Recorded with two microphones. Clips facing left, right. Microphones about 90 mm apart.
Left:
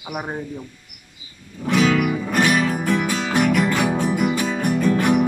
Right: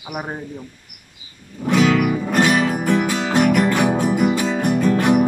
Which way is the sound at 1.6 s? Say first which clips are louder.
Right 2 dB; 20° right (ahead or behind).